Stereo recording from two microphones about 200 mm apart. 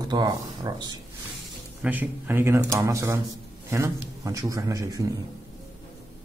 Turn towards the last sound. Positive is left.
turn(degrees=-15)  # may be behind; listen again after turning